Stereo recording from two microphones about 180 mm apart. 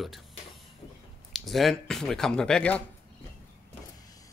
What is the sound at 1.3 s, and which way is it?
Speech, centre (ahead or behind).